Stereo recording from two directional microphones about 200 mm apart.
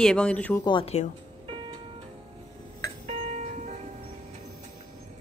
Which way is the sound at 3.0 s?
35° right (ahead or behind).